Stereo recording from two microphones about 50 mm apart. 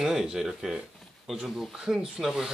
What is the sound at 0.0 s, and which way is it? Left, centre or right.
Speech, centre.